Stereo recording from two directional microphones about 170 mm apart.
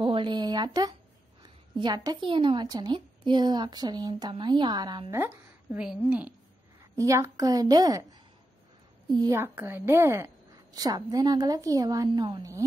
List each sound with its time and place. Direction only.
0.0 s a sound: 30° right (ahead or behind)
1.4 s a woman's voice: 25° right (ahead or behind)
5.1 s a woman's voice: 15° right (ahead or behind)
7.0 s a woman's voice: 20° right (ahead or behind)